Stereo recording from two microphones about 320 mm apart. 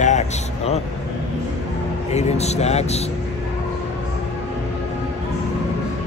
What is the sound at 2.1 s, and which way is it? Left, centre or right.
Speech, centre.